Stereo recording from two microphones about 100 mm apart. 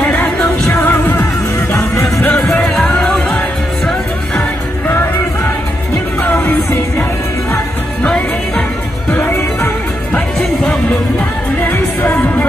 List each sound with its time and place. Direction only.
0.0 s music: 15° left (ahead or behind)
1.7 s music: 30° left (ahead or behind)
2.2 s music: 10° left (ahead or behind)
4.4 s music: 20° left (ahead or behind)
6.2 s music: 20° left (ahead or behind)
8.0 s music: 10° left (ahead or behind)
9.1 s music: 25° left (ahead or behind)
10.1 s music: 10° left (ahead or behind)
11.6 s music: 20° left (ahead or behind)